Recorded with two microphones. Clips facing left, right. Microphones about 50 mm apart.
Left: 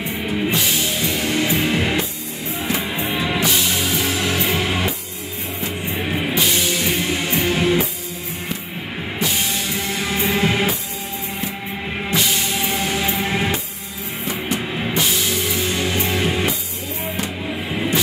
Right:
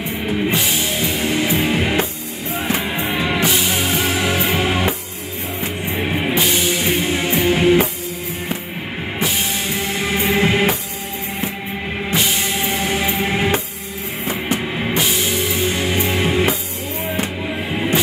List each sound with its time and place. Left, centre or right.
0.5 s music: right
2.5 s music: right
9.8 s music: right
12.1 s music: right
14.2 s music: right
14.7 s music: centre